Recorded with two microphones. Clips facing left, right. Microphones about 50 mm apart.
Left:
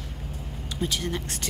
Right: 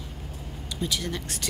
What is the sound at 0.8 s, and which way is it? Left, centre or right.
Speech, left.